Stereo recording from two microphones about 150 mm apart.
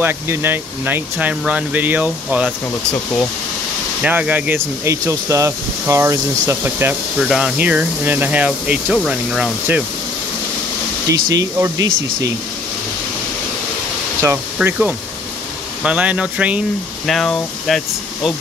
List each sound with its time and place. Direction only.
0.0 s speech: 15° right (ahead or behind)
4.0 s speech: 10° right (ahead or behind)
7.2 s speech: centre (ahead or behind)
11.1 s speech: 25° right (ahead or behind)
14.2 s speech: 10° right (ahead or behind)
17.0 s speech: centre (ahead or behind)